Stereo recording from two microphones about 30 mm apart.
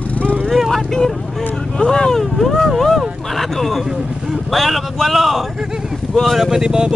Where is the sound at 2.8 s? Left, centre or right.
Centre.